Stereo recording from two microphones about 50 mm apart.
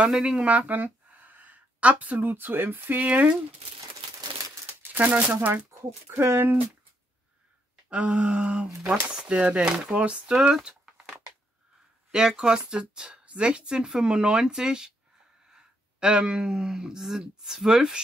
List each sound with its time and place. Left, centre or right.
0.1 s speech: centre
0.5 s a sound: right
2.3 s speech: right
4.9 s speech: right
5.8 s speech: right
7.9 s speech: right
12.1 s speech: centre